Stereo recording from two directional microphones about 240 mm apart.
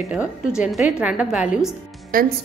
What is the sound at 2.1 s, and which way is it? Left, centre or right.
Speech, right.